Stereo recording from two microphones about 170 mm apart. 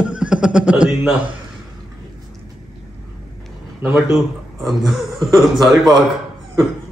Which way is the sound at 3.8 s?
5° right (ahead or behind).